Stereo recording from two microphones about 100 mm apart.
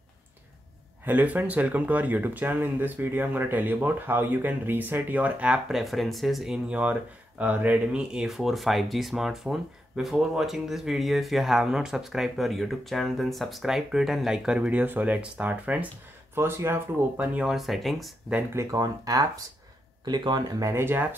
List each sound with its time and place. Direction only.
1.0 s speech: 15° right (ahead or behind)
16.3 s speech: 25° right (ahead or behind)
17.6 s speech: centre (ahead or behind)
18.5 s speech: 30° right (ahead or behind)